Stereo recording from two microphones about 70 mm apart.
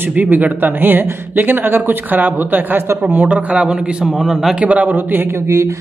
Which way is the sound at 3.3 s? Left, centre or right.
Centre.